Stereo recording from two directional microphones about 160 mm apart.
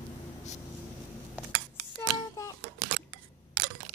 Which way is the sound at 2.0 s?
20° left (ahead or behind).